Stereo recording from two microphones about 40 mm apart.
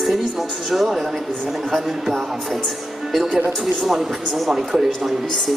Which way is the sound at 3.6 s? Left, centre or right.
Centre.